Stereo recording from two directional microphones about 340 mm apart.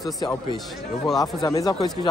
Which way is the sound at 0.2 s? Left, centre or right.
Centre.